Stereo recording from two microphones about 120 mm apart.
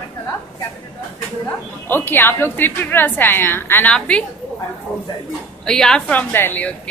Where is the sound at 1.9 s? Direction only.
15° left (ahead or behind).